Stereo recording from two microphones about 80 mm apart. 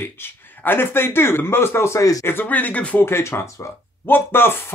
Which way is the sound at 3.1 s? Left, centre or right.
Left.